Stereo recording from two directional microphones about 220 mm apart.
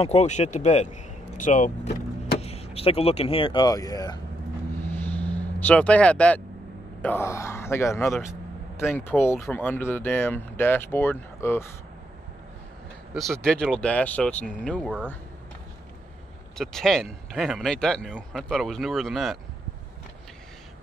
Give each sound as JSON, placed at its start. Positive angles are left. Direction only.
{"t": 0.0, "sound": "speech", "side_deg": 30}
{"t": 4.8, "sound": "vehicle", "side_deg": 10}
{"t": 7.0, "sound": "speech", "side_deg": 10}
{"t": 13.1, "sound": "speech", "side_deg": 0}
{"t": 16.5, "sound": "speech", "side_deg": 0}